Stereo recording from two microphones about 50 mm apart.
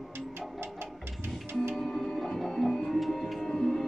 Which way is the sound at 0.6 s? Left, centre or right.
Right.